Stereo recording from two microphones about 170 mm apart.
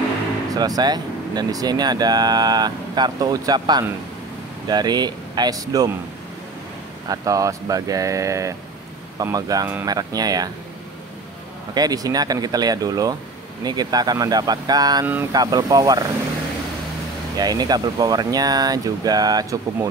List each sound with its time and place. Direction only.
0.6 s speech: 25° right (ahead or behind)
7.1 s speech: 20° right (ahead or behind)
11.7 s speech: 20° right (ahead or behind)
17.4 s speech: 25° right (ahead or behind)